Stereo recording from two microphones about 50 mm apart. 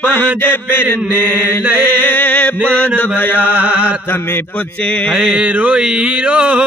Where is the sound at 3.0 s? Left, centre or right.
Left.